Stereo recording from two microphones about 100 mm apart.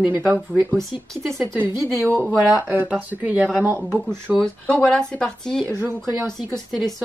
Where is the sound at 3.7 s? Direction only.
10° left (ahead or behind).